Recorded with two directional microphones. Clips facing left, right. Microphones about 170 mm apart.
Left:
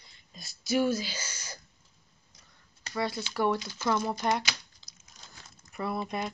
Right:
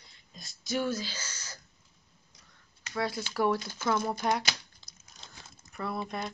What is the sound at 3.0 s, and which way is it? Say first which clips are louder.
Speech: even; centre (ahead or behind).